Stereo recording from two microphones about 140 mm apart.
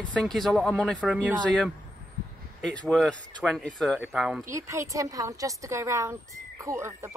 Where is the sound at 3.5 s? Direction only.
5° left (ahead or behind).